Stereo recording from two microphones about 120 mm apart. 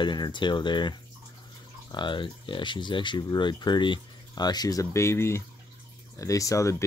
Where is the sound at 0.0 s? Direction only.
40° left (ahead or behind).